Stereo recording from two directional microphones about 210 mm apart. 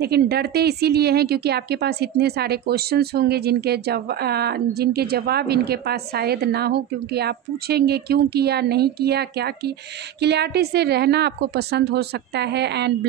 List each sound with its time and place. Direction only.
0.0 s speech: 50° right (ahead or behind)